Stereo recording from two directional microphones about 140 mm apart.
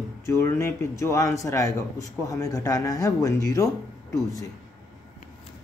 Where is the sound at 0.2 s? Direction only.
20° left (ahead or behind).